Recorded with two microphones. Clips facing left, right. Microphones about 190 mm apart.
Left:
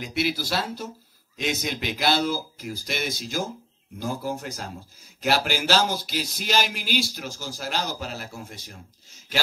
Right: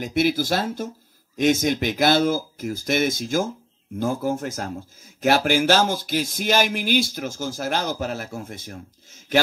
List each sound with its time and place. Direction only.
0.0 s speech: 50° right (ahead or behind)